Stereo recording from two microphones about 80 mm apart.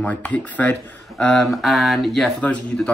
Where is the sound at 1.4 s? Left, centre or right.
Centre.